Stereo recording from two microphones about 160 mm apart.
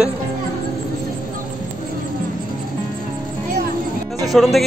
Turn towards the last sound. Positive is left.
turn(degrees=0)  # may be behind; listen again after turning